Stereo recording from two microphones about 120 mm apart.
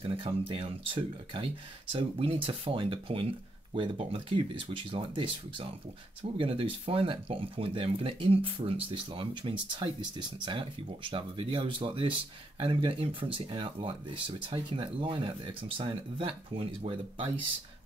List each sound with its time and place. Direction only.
0.0 s speech: 50° right (ahead or behind)